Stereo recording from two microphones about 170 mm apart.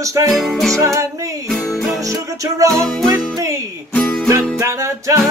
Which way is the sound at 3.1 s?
20° right (ahead or behind).